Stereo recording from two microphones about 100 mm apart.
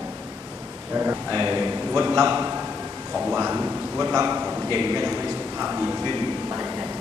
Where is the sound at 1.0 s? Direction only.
40° right (ahead or behind).